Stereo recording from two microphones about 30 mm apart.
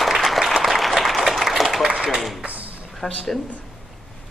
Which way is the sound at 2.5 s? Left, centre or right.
Right.